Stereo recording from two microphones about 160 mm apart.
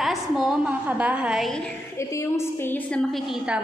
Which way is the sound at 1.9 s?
15° left (ahead or behind).